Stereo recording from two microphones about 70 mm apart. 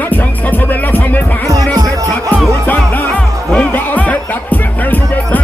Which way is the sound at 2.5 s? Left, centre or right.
Left.